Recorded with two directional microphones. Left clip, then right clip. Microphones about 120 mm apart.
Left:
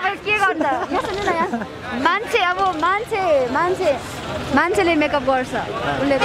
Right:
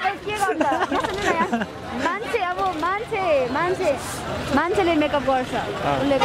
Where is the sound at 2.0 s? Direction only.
45° left (ahead or behind); by 3.2 s 30° left (ahead or behind).